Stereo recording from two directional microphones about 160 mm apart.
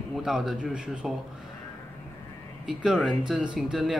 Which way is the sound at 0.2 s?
5° right (ahead or behind).